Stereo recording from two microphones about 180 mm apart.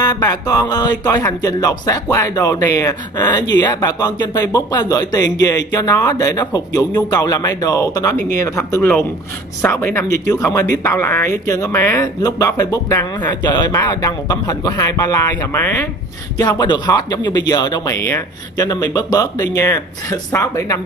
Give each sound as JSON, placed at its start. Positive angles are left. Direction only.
{"t": 0.0, "sound": "a man's voice", "side_deg": 20}
{"t": 16.3, "sound": "speech", "side_deg": 20}